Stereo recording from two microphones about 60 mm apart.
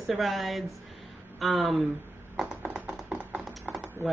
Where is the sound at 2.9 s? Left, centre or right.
Right.